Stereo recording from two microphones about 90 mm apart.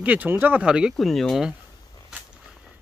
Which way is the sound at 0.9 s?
Centre (ahead or behind).